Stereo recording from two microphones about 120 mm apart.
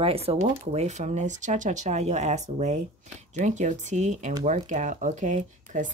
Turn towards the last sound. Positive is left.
turn(degrees=-90)